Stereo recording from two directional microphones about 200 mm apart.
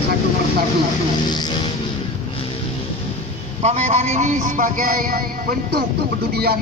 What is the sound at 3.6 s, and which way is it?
A man's voice, 35° right (ahead or behind).